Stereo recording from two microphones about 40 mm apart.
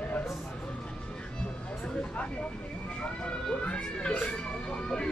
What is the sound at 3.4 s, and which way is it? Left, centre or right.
Speech, left.